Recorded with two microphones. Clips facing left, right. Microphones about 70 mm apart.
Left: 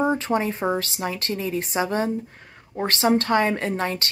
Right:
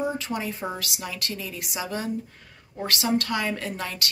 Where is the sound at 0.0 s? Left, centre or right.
Left.